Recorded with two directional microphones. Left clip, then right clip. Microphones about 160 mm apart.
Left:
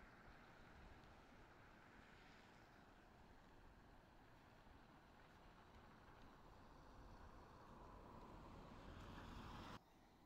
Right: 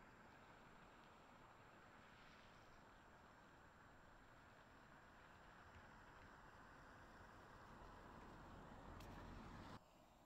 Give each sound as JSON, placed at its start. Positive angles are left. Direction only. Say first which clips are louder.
{"t": 9.5, "sound": "vehicle", "louder": "left 2 dB", "side_deg": 55}